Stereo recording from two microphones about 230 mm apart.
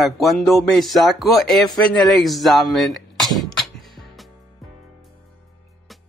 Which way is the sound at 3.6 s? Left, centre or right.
Centre.